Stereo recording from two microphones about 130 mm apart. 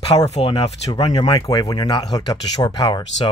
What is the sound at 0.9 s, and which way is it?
Speech, 40° left (ahead or behind).